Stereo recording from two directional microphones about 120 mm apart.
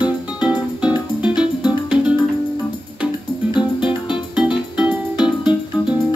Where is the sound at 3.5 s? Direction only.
40° left (ahead or behind).